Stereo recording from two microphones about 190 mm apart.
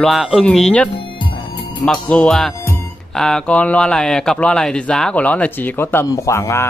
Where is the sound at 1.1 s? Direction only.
25° left (ahead or behind).